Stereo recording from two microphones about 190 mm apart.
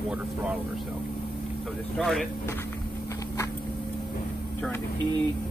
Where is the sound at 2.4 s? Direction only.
15° left (ahead or behind).